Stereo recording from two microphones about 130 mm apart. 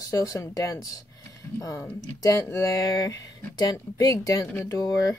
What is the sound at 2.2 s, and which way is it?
Speech, 25° left (ahead or behind).